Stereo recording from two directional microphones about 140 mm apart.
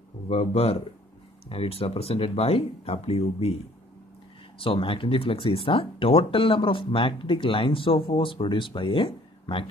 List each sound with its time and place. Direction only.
0.3 s speech: 50° left (ahead or behind)
4.6 s speech: 40° left (ahead or behind)